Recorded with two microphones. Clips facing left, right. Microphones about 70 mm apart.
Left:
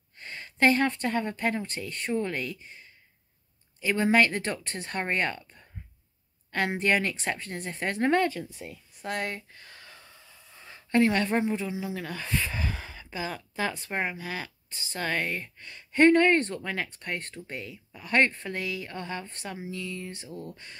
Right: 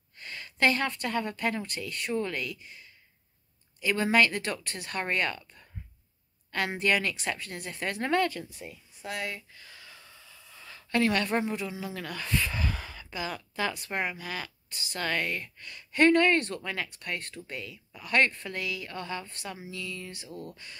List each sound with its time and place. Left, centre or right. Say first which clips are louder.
0.2 s speech: left 2 dB; left
6.8 s speech: even; left
9.0 s a sound: left 3 dB; left
10.1 s speech: right 1 dB; left
20.2 s speech: left 1 dB; left